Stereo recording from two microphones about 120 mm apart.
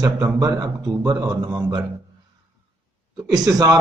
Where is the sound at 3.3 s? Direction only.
30° right (ahead or behind).